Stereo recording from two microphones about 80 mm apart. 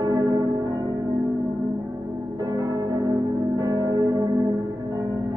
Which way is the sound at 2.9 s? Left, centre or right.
Right.